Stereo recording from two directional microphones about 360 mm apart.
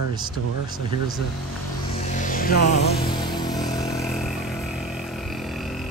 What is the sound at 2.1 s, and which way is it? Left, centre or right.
Music, left.